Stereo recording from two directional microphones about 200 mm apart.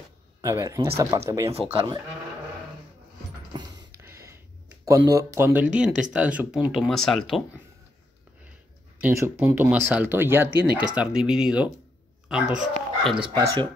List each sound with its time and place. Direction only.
0.4 s speech: 15° right (ahead or behind)
1.5 s speech: 30° right (ahead or behind)
3.5 s a sound: 20° right (ahead or behind)
5.8 s speech: 5° right (ahead or behind)
9.0 s speech: 10° right (ahead or behind)
13.4 s speech: 15° right (ahead or behind)